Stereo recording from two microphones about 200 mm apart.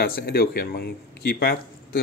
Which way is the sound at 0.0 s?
50° left (ahead or behind).